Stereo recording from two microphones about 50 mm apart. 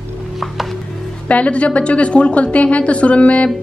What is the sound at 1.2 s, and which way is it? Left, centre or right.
A woman's voice, left.